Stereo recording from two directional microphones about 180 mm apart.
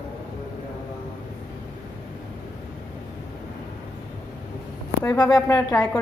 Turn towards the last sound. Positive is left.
turn(degrees=20)  # may be behind; listen again after turning